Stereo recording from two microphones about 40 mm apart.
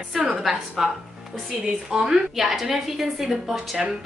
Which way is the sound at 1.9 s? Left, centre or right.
Centre.